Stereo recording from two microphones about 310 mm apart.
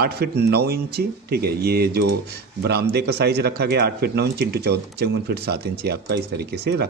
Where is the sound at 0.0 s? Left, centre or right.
Right.